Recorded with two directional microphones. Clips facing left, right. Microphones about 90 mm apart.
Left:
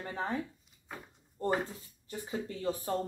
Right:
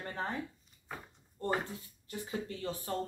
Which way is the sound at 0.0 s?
15° left (ahead or behind).